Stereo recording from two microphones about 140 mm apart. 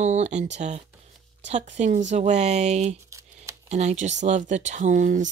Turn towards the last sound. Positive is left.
turn(degrees=-60)  # may be behind; listen again after turning